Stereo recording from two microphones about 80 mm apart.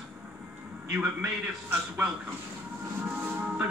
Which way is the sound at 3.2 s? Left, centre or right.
Centre.